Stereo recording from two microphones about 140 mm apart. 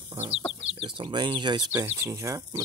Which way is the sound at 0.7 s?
40° right (ahead or behind).